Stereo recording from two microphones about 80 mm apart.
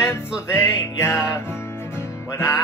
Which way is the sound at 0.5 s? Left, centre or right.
Left.